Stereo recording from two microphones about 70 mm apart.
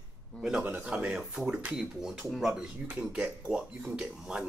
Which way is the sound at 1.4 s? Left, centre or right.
Right.